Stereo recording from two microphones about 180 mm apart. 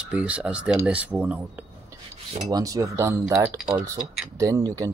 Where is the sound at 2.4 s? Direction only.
20° right (ahead or behind).